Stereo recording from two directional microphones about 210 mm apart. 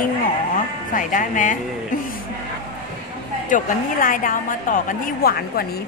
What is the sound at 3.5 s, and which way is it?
A woman's voice, 40° left (ahead or behind).